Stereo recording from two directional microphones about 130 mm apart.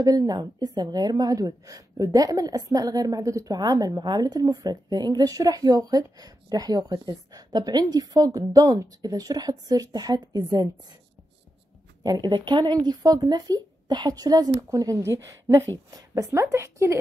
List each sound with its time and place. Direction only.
0.0 s a woman's voice: 30° right (ahead or behind)
12.0 s a woman's voice: 30° right (ahead or behind)